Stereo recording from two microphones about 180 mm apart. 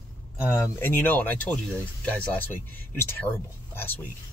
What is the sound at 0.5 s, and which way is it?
Speech, 15° left (ahead or behind).